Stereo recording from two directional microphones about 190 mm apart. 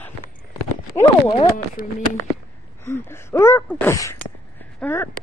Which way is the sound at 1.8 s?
50° left (ahead or behind).